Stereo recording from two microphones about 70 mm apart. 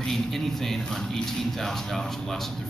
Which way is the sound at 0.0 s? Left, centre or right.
Centre.